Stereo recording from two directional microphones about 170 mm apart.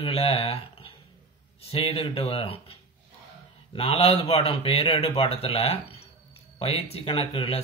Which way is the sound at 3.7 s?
35° left (ahead or behind).